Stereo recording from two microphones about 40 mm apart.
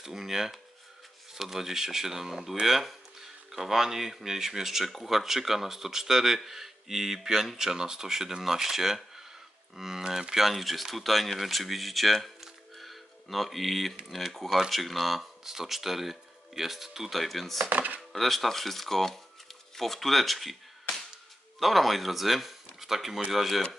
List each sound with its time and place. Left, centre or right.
0.0 s speech: centre
17.6 s chopping: right
18.1 s speech: centre
21.5 s speech: centre